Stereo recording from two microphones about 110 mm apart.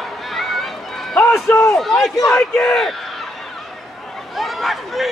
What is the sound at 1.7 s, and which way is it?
Speech, centre (ahead or behind).